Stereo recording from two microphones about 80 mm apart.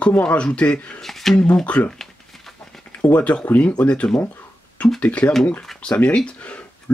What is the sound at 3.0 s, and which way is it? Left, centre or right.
Speech, centre.